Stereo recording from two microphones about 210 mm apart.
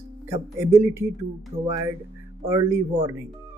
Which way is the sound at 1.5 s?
30° right (ahead or behind).